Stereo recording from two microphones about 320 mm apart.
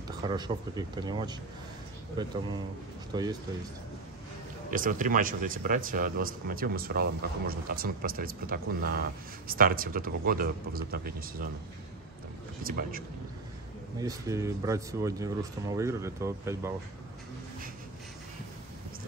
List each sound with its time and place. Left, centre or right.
0.3 s speech: centre
3.1 s speech: centre
4.6 s speech: right
12.6 s speech: right
13.9 s speech: centre